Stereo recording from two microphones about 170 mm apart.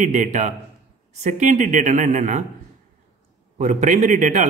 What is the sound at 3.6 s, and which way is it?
Speech, 45° right (ahead or behind).